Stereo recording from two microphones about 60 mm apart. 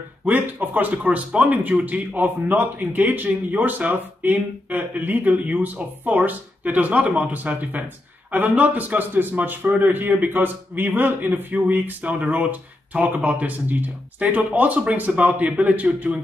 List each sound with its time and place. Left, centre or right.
0.2 s a man's voice: right